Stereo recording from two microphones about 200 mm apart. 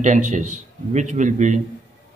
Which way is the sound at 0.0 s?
35° right (ahead or behind).